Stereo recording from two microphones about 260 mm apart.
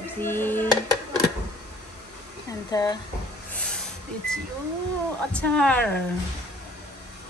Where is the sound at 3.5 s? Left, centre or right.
Centre.